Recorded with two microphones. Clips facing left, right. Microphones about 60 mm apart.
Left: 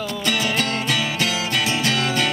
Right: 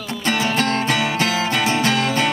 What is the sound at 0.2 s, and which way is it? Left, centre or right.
Music, right.